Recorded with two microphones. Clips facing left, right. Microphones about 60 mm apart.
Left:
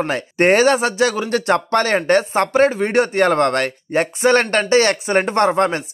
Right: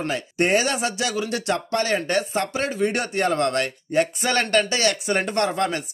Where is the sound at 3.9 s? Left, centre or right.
Left.